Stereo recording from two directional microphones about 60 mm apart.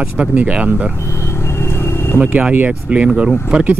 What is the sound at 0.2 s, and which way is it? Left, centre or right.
Speech, right.